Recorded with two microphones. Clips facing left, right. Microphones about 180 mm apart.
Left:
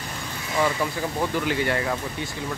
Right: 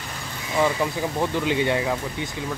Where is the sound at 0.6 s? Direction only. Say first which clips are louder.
Right 2 dB; 15° right (ahead or behind).